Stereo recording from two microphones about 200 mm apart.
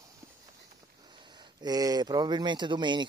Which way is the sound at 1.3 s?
20° right (ahead or behind).